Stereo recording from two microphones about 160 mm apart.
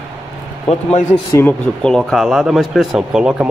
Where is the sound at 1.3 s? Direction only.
5° left (ahead or behind).